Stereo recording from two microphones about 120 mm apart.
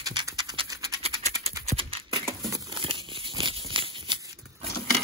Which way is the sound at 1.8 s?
50° right (ahead or behind).